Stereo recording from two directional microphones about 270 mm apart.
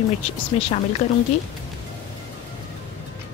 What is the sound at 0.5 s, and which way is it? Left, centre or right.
Speech, left.